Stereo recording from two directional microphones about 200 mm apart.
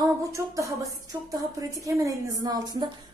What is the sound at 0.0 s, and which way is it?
A woman's voice, 15° right (ahead or behind).